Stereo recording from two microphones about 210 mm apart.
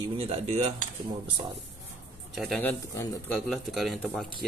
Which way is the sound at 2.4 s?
5° left (ahead or behind).